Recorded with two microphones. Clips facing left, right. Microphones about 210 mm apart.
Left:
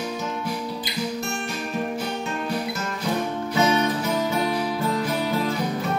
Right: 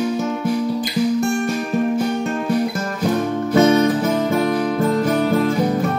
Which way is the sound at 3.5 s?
50° right (ahead or behind).